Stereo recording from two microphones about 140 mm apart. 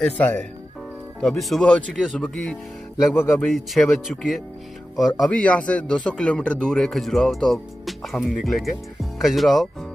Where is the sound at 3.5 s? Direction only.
Centre (ahead or behind).